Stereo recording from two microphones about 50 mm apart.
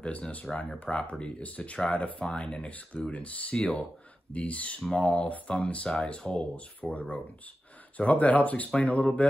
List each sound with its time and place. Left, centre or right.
0.0 s speech: left